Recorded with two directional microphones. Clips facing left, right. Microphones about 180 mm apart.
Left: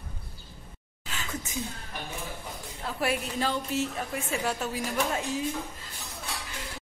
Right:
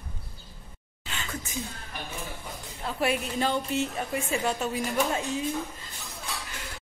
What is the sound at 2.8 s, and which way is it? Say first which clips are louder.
A woman's voice: right 2 dB; centre (ahead or behind).